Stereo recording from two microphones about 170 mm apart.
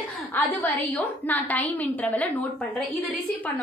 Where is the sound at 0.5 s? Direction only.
10° left (ahead or behind).